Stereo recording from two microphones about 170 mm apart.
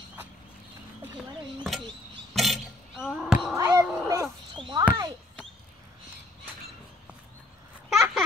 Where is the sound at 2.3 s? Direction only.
Centre (ahead or behind).